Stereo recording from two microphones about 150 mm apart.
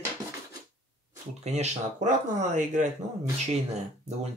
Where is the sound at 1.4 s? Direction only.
50° right (ahead or behind).